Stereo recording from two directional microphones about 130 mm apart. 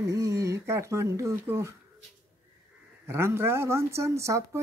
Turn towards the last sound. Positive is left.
turn(degrees=-20)  # may be behind; listen again after turning